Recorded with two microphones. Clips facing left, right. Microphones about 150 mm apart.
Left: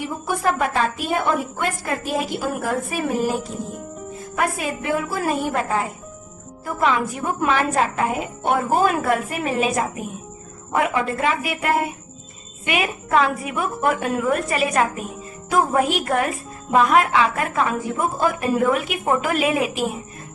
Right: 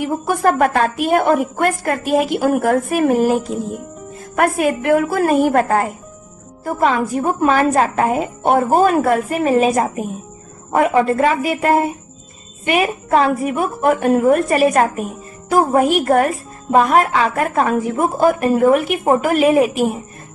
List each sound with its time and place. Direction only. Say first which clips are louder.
0.4 s a woman's voice: right 6 dB; 50° right (ahead or behind)
4.4 s speech: right 8 dB; 60° right (ahead or behind)
6.6 s a woman's voice: right 4 dB; 40° right (ahead or behind)
15.9 s a woman's voice: right 7 dB; 50° right (ahead or behind)
19.2 s a woman's voice: right 7 dB; 55° right (ahead or behind)